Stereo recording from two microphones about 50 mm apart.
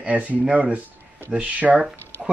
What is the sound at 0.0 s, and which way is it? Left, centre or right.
A man's voice, right.